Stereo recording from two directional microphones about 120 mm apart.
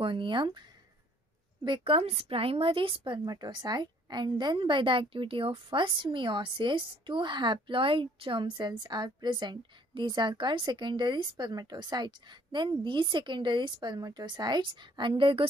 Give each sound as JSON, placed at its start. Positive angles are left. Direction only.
{"t": 0.0, "sound": "a woman's voice", "side_deg": -45}